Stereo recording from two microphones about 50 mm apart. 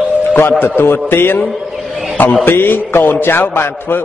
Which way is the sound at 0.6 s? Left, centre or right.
Left.